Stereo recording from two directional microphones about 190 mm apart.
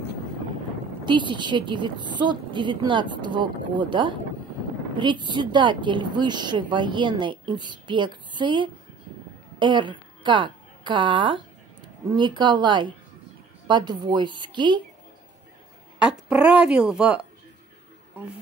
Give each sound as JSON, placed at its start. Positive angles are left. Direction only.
{"t": 1.0, "sound": "a woman's voice", "side_deg": -25}
{"t": 16.0, "sound": "speech", "side_deg": -5}